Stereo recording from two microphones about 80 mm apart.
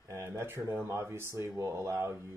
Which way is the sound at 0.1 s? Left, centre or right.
Right.